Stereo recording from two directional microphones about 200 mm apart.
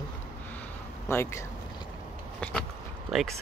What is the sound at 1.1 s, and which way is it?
Speech, 15° left (ahead or behind).